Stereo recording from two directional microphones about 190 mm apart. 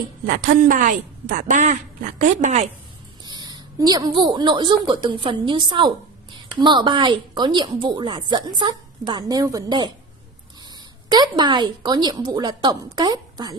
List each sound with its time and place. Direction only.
0.3 s a woman's voice: 45° right (ahead or behind)
3.3 s a woman's voice: 20° right (ahead or behind)
11.1 s a woman's voice: 20° right (ahead or behind)